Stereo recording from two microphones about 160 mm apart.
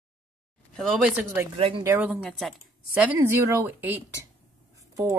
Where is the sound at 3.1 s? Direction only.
15° right (ahead or behind).